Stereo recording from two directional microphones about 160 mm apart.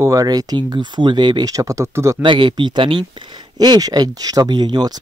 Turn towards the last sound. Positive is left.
turn(degrees=-25)  # may be behind; listen again after turning